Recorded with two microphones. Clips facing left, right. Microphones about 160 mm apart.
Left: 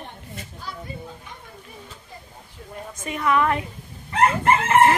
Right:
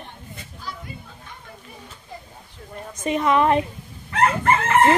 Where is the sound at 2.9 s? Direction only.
20° right (ahead or behind).